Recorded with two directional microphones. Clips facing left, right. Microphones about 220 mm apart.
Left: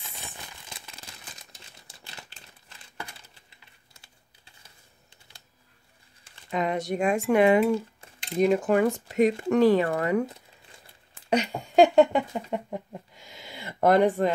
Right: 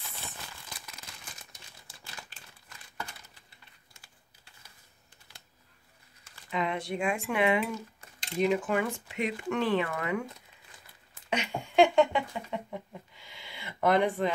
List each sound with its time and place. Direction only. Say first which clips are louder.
0.2 s crumpling: left 2 dB; 25° left (ahead or behind)
1.9 s a sound: left 1 dB; 25° left (ahead or behind)
6.5 s speech: left 5 dB; 45° left (ahead or behind)
11.2 s speech: left 7 dB; 40° left (ahead or behind)